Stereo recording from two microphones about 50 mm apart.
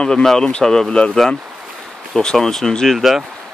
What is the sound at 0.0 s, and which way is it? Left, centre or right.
Speech, centre.